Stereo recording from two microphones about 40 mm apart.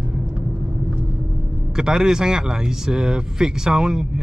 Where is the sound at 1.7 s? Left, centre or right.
Centre.